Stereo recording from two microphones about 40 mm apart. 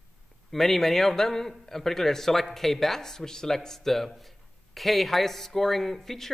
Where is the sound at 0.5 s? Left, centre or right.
Centre.